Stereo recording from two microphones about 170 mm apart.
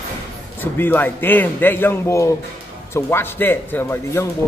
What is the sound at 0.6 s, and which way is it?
A man's voice, 10° left (ahead or behind).